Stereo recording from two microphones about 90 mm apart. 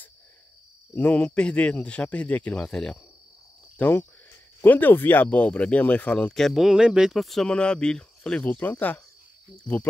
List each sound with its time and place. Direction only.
0.9 s speech: 15° left (ahead or behind)
3.7 s speech: 20° left (ahead or behind)
6.3 s speech: centre (ahead or behind); by 9.0 s 20° left (ahead or behind)